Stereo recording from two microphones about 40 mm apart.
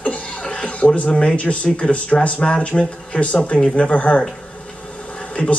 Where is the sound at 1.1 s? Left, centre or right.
Left.